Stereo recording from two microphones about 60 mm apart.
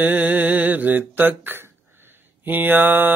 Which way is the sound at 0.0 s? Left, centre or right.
Right.